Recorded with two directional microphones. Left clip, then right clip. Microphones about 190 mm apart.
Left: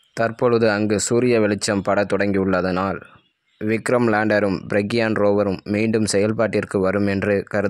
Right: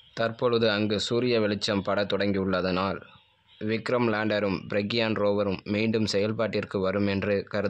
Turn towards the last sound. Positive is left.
turn(degrees=45)  # may be behind; listen again after turning